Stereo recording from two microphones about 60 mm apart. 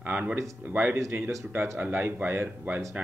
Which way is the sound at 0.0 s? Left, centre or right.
Right.